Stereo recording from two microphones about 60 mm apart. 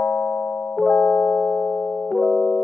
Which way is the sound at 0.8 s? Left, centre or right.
Centre.